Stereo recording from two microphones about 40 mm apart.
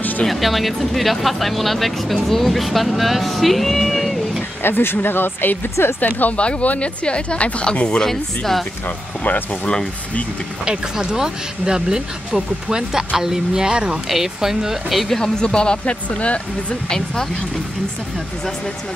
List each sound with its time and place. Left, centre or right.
0.3 s speech: centre
4.6 s speech: left
5.9 s speech: left
6.3 s a woman's voice: left
8.0 s speech: centre
8.8 s speech: left
10.6 s speech: centre
14.0 s speech: centre
15.0 s speech: centre
15.4 s a woman's voice: left
16.9 s speech: centre